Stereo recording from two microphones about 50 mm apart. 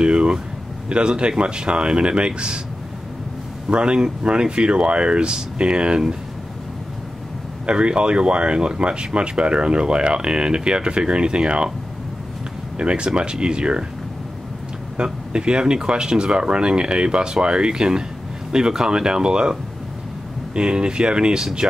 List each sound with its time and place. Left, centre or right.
0.0 s a sound: centre
0.8 s speech: right
3.7 s speech: centre
7.6 s speech: centre
12.7 s speech: right
15.0 s speech: centre
20.5 s speech: centre